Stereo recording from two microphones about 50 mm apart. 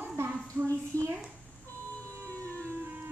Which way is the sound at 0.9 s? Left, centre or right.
Left.